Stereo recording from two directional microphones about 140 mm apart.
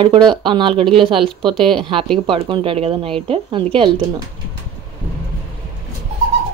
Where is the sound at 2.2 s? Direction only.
40° right (ahead or behind).